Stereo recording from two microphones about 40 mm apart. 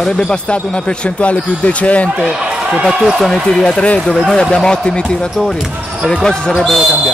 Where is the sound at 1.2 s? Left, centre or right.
Left.